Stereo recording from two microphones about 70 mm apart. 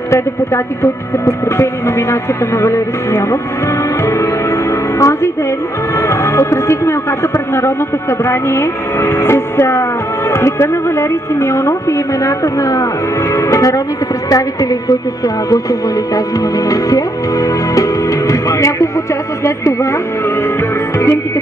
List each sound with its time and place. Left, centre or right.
0.1 s speech: left
4.0 s music: left
5.9 s a woman's voice: left
16.3 s music: left
19.4 s speech: left